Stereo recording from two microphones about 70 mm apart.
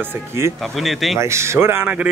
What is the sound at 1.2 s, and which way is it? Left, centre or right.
Speech, right.